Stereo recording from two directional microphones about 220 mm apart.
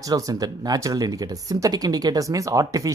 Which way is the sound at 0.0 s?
15° right (ahead or behind).